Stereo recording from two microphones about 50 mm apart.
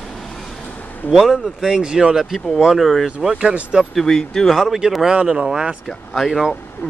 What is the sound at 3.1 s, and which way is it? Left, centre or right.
Speech, centre.